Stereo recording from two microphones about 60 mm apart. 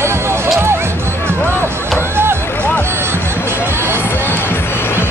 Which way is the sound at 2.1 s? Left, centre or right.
Right.